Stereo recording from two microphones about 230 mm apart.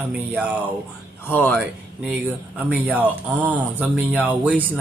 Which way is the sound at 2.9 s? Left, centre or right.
Centre.